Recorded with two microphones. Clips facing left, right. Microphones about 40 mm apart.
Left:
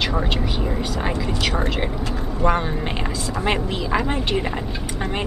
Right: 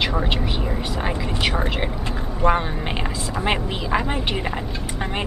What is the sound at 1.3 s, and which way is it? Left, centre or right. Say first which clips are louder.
Speech: even; centre.